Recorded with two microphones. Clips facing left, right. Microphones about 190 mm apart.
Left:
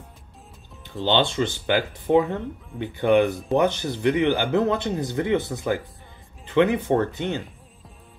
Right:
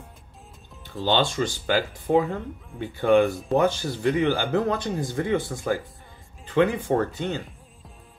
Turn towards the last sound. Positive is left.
turn(degrees=20)  # may be behind; listen again after turning